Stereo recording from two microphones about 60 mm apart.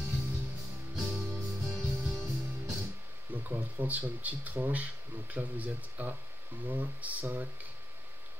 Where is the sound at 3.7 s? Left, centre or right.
Right.